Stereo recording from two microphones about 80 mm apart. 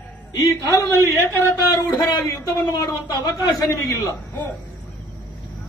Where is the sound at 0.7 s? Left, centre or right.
Left.